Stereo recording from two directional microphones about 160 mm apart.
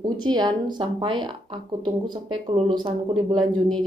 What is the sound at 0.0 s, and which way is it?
A woman's voice, 25° right (ahead or behind).